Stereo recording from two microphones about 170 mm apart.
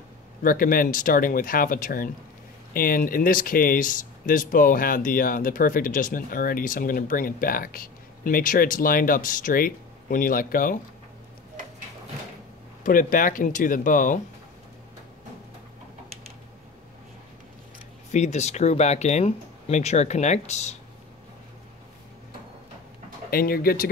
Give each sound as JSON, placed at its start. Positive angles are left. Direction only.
{"t": 0.4, "sound": "speech", "side_deg": 55}
{"t": 12.8, "sound": "speech", "side_deg": 55}
{"t": 18.1, "sound": "speech", "side_deg": 40}
{"t": 23.3, "sound": "speech", "side_deg": 60}